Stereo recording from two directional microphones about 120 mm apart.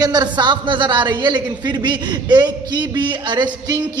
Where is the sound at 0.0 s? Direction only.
35° right (ahead or behind).